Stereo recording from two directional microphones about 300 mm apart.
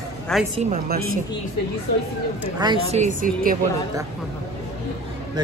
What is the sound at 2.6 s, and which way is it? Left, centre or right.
Speech, centre.